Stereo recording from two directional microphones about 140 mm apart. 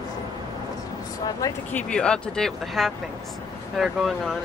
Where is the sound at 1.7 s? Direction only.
5° left (ahead or behind).